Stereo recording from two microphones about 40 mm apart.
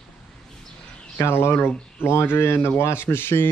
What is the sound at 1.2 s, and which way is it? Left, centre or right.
Speech, left.